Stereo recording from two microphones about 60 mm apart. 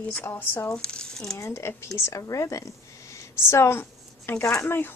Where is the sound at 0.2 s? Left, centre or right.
Left.